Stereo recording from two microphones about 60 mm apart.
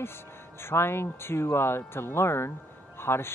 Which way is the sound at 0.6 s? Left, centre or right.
Left.